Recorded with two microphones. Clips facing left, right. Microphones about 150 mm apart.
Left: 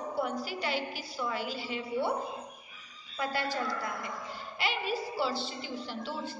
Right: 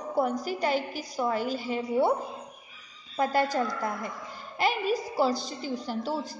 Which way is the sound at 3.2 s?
45° right (ahead or behind).